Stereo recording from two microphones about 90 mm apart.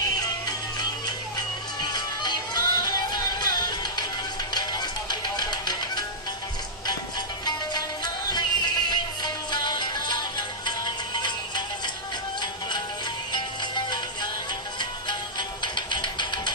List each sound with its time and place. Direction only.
0.2 s music: 50° left (ahead or behind)
7.4 s music: 55° left (ahead or behind)
13.3 s music: 55° left (ahead or behind)